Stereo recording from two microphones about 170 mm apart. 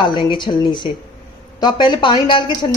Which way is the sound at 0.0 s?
30° left (ahead or behind).